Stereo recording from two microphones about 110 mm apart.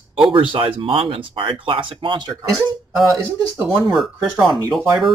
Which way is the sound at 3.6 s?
5° right (ahead or behind).